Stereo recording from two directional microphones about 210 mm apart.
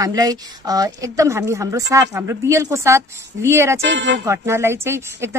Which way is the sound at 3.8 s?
60° right (ahead or behind).